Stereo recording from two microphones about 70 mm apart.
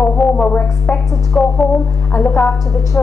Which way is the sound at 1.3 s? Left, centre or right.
Centre.